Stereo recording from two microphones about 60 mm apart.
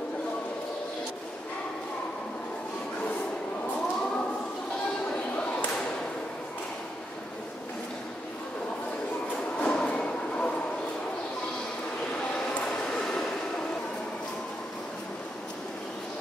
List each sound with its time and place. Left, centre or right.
9.6 s train: centre
12.9 s train: centre